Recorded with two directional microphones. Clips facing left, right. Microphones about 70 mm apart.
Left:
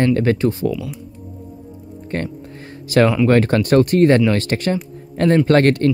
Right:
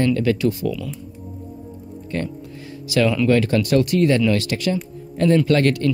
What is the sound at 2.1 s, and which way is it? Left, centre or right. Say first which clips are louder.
Speech: left 2 dB; left.